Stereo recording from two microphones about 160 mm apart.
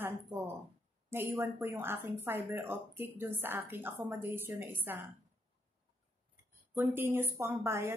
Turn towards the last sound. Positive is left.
turn(degrees=-15)  # may be behind; listen again after turning